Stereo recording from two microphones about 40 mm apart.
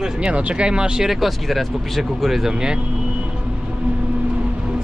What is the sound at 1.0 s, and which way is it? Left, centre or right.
Speech, centre.